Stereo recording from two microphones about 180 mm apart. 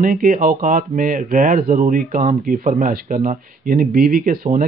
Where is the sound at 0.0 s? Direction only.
50° right (ahead or behind).